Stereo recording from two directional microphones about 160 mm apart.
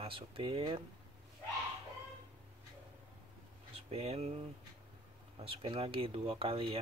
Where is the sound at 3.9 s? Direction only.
40° right (ahead or behind).